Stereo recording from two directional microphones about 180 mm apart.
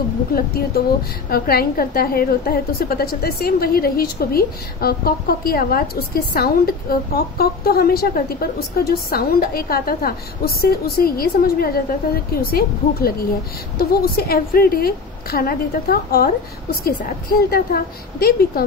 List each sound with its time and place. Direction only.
0.3 s a woman's voice: 55° left (ahead or behind)